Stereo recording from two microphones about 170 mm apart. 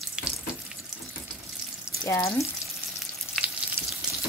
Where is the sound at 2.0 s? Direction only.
20° left (ahead or behind).